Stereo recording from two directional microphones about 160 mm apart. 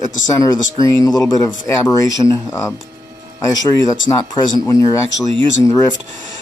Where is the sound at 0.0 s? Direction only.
20° left (ahead or behind).